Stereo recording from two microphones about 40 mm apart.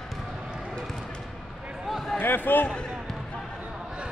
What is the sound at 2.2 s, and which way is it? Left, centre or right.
Basketball bounce, left.